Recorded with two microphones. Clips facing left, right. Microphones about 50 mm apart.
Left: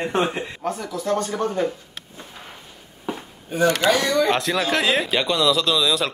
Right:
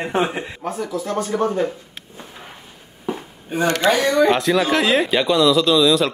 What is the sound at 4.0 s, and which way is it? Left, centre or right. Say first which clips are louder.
Speech: right 4 dB; right.